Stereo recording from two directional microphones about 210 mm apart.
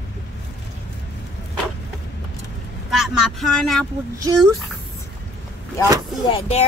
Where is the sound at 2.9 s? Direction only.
Centre (ahead or behind).